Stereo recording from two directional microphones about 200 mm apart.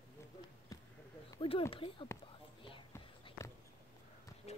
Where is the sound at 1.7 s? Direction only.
25° left (ahead or behind).